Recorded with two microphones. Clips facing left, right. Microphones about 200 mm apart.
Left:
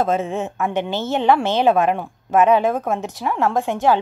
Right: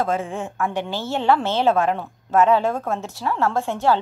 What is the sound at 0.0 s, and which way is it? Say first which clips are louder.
A woman's voice: left 3 dB; 20° left (ahead or behind).